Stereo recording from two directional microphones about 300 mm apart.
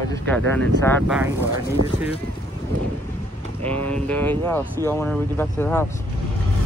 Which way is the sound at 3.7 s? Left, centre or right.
Centre.